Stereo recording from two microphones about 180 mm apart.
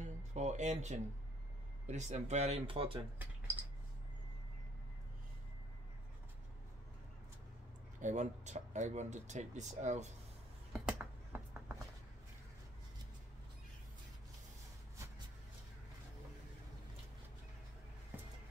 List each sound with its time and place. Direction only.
0.0 s music: 40° right (ahead or behind)
1.9 s speech: 40° right (ahead or behind)
3.2 s speech: 10° right (ahead or behind)
8.0 s speech: 40° right (ahead or behind)
10.9 s a sound: 10° right (ahead or behind)